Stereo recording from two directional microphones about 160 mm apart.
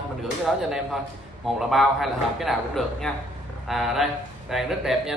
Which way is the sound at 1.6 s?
Centre (ahead or behind).